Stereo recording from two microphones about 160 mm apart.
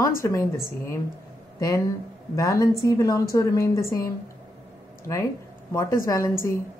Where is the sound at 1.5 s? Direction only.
25° left (ahead or behind).